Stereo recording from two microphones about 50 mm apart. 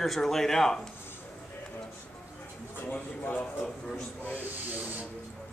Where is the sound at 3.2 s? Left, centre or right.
Left.